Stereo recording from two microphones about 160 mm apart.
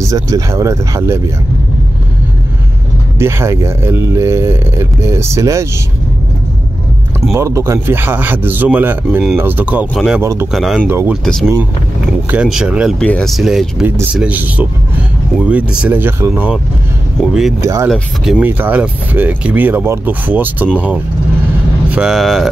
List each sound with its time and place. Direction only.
0.0 s speech: 20° right (ahead or behind)
3.2 s speech: 15° right (ahead or behind)
7.3 s speech: 20° right (ahead or behind)
9.9 s speech: centre (ahead or behind)
10.2 s speech: 15° right (ahead or behind)
10.5 s speech: centre (ahead or behind)
10.9 s speech: 15° right (ahead or behind)
12.3 s speech: 5° right (ahead or behind)
13.0 s speech: 5° left (ahead or behind); by 16.5 s 15° right (ahead or behind)
17.6 s speech: 20° right (ahead or behind)
17.8 s speech: centre (ahead or behind)
18.4 s speech: 10° right (ahead or behind)
21.9 s speech: 5° right (ahead or behind)